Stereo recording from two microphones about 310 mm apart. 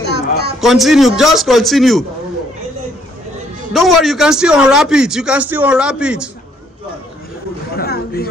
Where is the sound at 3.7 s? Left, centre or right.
Centre.